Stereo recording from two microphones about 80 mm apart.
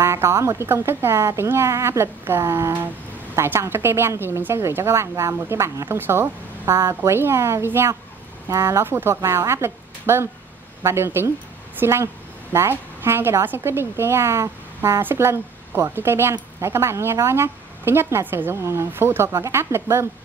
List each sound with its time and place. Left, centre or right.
0.0 s speech: right
6.7 s a woman's voice: right
7.0 s speech: right
8.5 s speech: right
8.8 s a woman's voice: right